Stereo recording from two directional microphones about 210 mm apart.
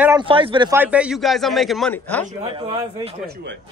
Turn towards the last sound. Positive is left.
turn(degrees=-25)  # may be behind; listen again after turning